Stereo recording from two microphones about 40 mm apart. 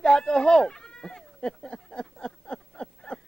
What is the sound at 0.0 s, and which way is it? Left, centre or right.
Goat, left.